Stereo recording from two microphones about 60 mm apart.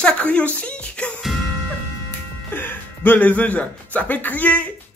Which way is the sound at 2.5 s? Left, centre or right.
Left.